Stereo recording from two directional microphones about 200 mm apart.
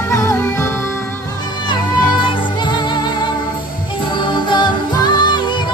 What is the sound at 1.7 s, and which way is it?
Music, 20° left (ahead or behind).